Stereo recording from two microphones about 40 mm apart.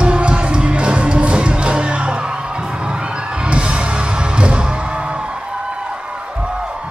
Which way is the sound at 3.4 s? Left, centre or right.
Right.